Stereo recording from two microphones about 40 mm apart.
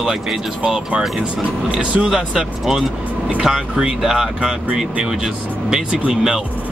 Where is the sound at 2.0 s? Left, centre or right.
Centre.